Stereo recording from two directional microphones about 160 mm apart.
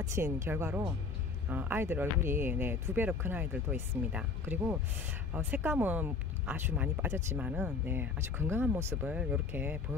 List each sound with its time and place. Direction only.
0.0 s speech: 20° right (ahead or behind)